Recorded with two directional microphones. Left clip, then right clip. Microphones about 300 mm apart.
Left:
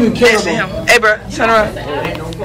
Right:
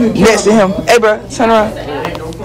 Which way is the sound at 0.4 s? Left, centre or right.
Centre.